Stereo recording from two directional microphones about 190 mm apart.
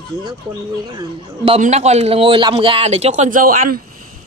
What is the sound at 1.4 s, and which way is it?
A man's voice, 35° right (ahead or behind).